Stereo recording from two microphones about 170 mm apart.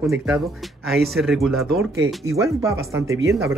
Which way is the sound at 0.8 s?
Centre (ahead or behind).